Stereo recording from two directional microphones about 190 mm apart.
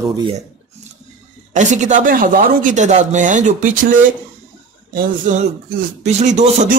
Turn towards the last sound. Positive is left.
turn(degrees=-40)  # may be behind; listen again after turning